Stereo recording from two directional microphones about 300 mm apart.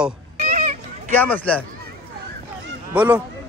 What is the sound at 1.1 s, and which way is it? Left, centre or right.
Speech, centre.